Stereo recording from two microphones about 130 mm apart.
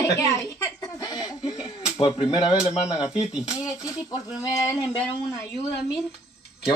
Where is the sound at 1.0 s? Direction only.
30° left (ahead or behind).